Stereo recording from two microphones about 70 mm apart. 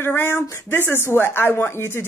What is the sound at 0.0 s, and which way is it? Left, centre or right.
Speech, left.